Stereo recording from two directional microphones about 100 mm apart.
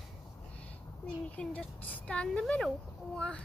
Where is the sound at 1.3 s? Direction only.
10° left (ahead or behind).